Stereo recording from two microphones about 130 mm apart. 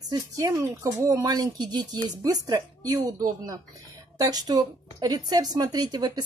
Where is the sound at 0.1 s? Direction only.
25° right (ahead or behind).